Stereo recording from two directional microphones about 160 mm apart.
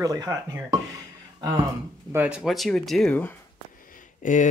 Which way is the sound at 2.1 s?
10° right (ahead or behind).